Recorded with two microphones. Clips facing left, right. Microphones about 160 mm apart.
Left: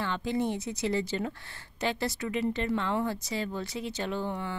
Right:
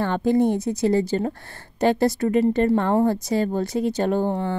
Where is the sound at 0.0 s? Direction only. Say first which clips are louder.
Right 10 dB; 50° right (ahead or behind).